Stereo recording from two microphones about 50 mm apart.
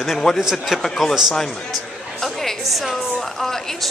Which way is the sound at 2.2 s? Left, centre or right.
Centre.